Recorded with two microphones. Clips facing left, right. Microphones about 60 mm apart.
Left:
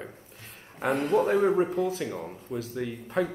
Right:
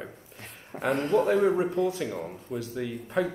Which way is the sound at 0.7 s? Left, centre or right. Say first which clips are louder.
Even; right.